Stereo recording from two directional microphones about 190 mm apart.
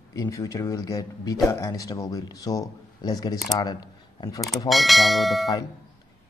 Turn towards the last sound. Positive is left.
turn(degrees=0)  # may be behind; listen again after turning